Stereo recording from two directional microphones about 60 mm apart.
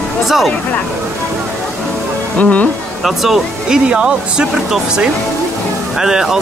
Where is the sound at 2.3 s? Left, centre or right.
Left.